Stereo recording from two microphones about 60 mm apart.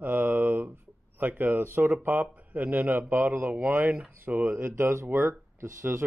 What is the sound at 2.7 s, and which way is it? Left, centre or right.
A man's voice, right.